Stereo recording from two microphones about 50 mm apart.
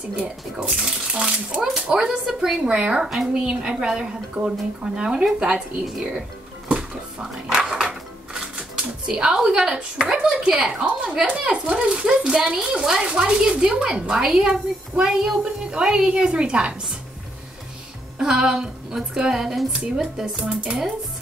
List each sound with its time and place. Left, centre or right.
0.1 s speech: centre
2.0 s speech: centre
2.6 s speech: centre
6.7 s dishes: centre
9.9 s speech: centre
18.2 s speech: centre
19.7 s speech: right